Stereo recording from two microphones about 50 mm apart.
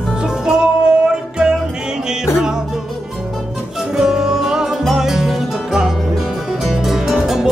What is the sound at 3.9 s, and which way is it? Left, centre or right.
Music, centre.